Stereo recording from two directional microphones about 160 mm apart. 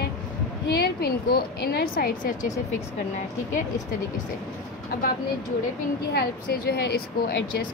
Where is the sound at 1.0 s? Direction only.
75° left (ahead or behind).